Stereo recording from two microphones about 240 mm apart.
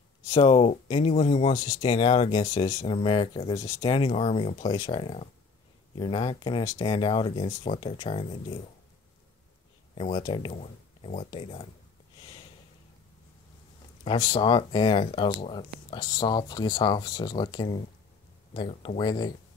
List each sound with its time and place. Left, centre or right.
0.3 s speech: left
9.9 s speech: left
12.2 s a sound: left
14.0 s speech: centre